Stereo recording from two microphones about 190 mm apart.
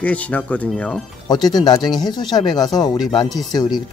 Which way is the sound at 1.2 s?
20° left (ahead or behind).